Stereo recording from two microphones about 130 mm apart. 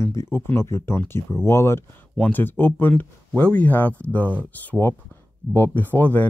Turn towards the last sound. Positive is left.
turn(degrees=15)  # may be behind; listen again after turning